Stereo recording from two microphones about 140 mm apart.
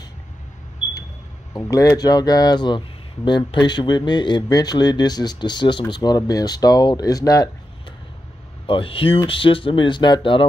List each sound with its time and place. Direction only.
1.6 s speech: 25° left (ahead or behind)
8.6 s speech: 40° left (ahead or behind)